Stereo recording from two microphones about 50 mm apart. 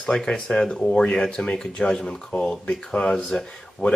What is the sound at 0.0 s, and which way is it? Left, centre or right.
Speech, centre.